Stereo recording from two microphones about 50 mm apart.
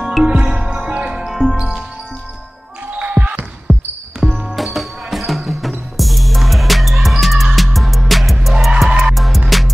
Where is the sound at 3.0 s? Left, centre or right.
Right.